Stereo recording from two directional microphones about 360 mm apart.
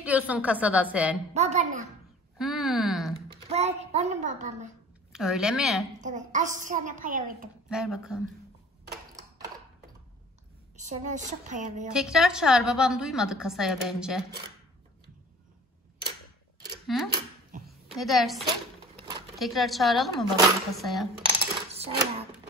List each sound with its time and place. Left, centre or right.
0.0 s a woman's voice: centre
1.3 s a woman's voice: centre
2.3 s a sound: centre
3.3 s a sound: centre
5.1 s a woman's voice: centre
5.9 s a woman's voice: right
7.7 s a woman's voice: centre
10.8 s a woman's voice: centre
11.9 s a woman's voice: centre
16.8 s speech: centre
17.6 s a sound: centre
19.3 s a woman's voice: centre
21.4 s coin: centre